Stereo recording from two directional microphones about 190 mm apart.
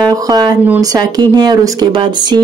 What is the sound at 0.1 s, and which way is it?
A woman's voice, 20° right (ahead or behind).